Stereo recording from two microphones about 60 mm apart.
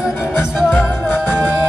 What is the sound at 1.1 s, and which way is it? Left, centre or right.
Music, left.